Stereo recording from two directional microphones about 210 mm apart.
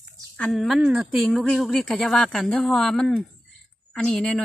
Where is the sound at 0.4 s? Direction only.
Centre (ahead or behind).